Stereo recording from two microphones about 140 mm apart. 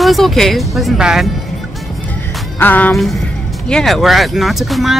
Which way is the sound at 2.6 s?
15° left (ahead or behind).